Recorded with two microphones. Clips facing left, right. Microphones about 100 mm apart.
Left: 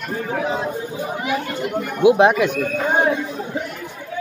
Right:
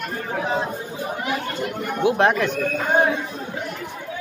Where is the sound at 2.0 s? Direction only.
15° left (ahead or behind).